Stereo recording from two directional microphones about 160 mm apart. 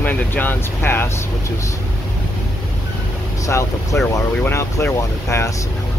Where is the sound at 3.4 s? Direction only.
20° left (ahead or behind).